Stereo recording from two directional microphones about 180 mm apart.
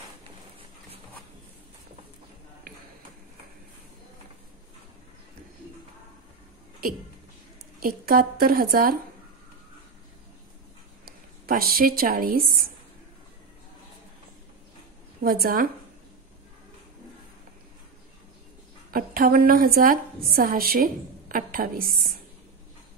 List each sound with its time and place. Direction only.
7.8 s a woman's voice: 55° right (ahead or behind)
11.1 s speech: 55° right (ahead or behind)
15.2 s a woman's voice: 55° right (ahead or behind)
18.9 s a woman's voice: 55° right (ahead or behind)